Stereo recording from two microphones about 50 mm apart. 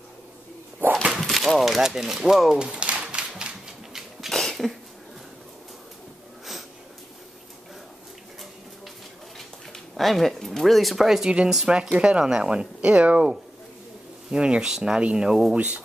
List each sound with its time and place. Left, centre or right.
1.1 s speech: centre
2.6 s a sound: right
4.3 s a sound: centre
9.7 s speech: centre
11.9 s speech: centre
14.3 s speech: centre
15.0 s speech: right